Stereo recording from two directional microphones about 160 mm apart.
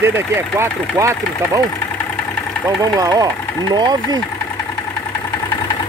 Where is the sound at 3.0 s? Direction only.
25° right (ahead or behind).